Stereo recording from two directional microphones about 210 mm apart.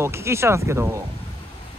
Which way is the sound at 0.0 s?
10° right (ahead or behind).